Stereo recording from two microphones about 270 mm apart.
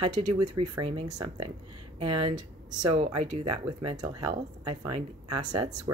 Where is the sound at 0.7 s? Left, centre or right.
Centre.